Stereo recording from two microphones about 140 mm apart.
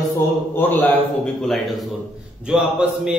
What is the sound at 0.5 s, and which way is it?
Speech, 15° left (ahead or behind).